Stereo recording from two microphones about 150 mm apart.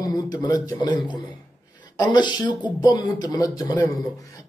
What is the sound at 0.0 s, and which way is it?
Speech, 25° left (ahead or behind).